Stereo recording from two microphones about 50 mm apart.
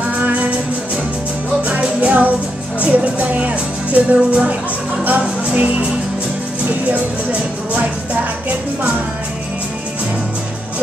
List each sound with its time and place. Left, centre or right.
0.1 s music: right
1.6 s music: right
6.9 s speech: right